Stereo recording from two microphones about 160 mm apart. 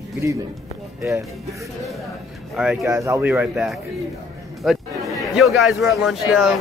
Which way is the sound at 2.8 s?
20° right (ahead or behind).